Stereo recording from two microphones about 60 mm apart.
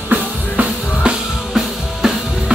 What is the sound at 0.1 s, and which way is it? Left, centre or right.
Music, right.